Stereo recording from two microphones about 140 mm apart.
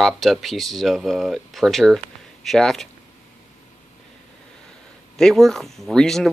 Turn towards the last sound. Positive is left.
turn(degrees=5)  # may be behind; listen again after turning